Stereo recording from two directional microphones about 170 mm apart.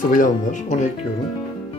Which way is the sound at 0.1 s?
50° left (ahead or behind).